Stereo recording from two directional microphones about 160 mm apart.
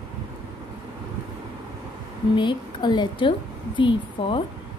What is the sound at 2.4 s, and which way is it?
A woman's voice, 30° left (ahead or behind).